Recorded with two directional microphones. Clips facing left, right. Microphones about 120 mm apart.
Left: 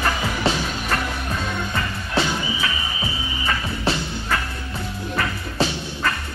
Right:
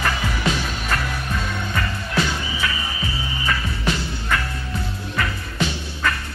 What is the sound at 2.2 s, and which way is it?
Music, 25° left (ahead or behind).